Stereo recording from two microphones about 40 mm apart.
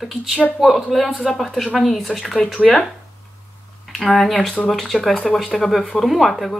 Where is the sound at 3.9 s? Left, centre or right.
Centre.